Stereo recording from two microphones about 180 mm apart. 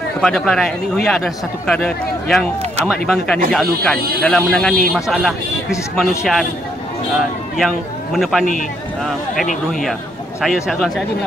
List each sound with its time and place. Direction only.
0.2 s a man's voice: centre (ahead or behind)
7.5 s a man's voice: centre (ahead or behind)
9.7 s a man's voice: centre (ahead or behind)